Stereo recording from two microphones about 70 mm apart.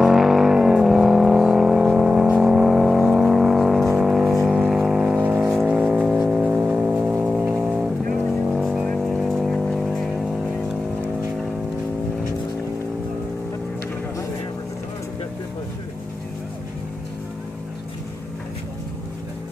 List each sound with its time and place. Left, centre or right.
0.0 s vehicle: centre
4.0 s music: centre
4.5 s vehicle: centre
5.7 s a sound: centre
6.5 s music: centre
8.3 s vehicle: centre
8.8 s vehicle: centre